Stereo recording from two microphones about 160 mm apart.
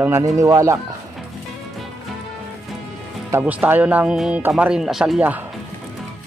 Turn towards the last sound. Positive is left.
turn(degrees=-5)  # may be behind; listen again after turning